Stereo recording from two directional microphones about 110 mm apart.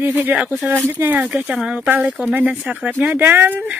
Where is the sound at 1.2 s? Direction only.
5° right (ahead or behind).